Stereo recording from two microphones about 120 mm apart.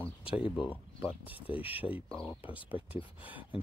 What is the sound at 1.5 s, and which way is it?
Speech, 50° left (ahead or behind).